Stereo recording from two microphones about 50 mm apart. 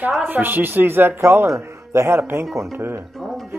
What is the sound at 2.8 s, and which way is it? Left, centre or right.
Speech, right.